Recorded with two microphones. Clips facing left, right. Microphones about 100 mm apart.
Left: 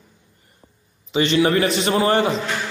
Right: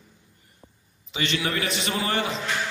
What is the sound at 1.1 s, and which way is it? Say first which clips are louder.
A man's voice: left 10 dB; 30° left (ahead or behind).